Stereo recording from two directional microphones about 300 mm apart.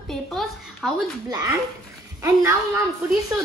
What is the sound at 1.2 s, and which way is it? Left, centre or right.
Speech, centre.